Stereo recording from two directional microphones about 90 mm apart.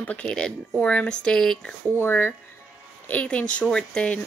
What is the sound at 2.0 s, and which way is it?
A woman's voice, 25° left (ahead or behind).